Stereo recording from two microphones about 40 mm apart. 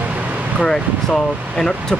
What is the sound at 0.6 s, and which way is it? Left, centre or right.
Speech, centre.